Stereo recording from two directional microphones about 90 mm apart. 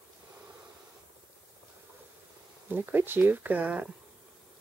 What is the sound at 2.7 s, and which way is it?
Speech, 25° right (ahead or behind).